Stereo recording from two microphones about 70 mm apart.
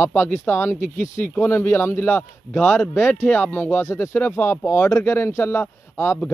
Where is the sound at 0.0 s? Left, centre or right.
Left.